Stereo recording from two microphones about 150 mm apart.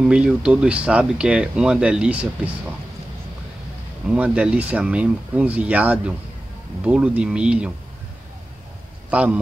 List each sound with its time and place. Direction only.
0.0 s speech: 5° right (ahead or behind)
4.1 s speech: 10° right (ahead or behind)
9.1 s speech: 10° right (ahead or behind)